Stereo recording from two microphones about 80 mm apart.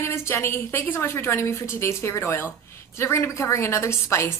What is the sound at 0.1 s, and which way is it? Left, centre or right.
Speech, left.